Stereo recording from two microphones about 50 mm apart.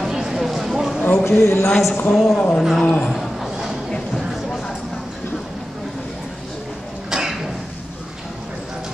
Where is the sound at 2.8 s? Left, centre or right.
Left.